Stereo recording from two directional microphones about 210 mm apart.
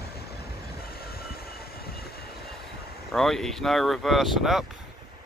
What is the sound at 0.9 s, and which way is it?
Vehicle, 45° left (ahead or behind).